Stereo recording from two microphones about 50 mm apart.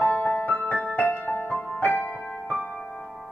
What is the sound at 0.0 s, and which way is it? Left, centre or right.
Music, left.